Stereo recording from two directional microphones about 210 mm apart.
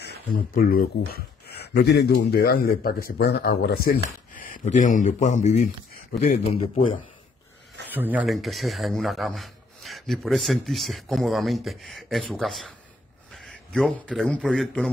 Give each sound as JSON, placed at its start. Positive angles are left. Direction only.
{"t": 0.3, "sound": "a man's voice", "side_deg": 45}
{"t": 7.9, "sound": "speech", "side_deg": -10}